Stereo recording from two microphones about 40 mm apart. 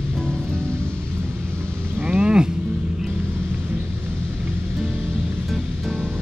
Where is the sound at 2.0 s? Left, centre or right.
Right.